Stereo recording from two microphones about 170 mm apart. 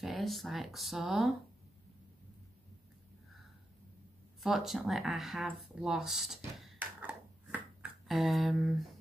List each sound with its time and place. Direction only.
0.0 s speech: centre (ahead or behind)
4.4 s speech: centre (ahead or behind)